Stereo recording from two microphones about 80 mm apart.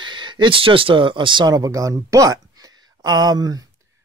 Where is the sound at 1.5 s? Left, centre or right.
Right.